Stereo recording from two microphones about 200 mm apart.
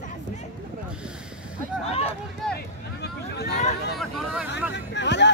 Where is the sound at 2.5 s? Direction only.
55° left (ahead or behind).